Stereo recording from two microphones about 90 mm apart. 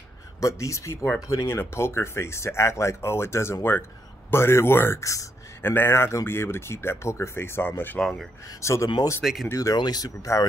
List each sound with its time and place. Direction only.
0.4 s speech: 35° left (ahead or behind)
1.6 s speech: 30° left (ahead or behind)
5.6 s speech: 25° left (ahead or behind)
8.0 s speech: 10° left (ahead or behind)
8.5 s speech: 35° left (ahead or behind)
9.2 s speech: 5° right (ahead or behind)
9.5 s speech: 40° left (ahead or behind)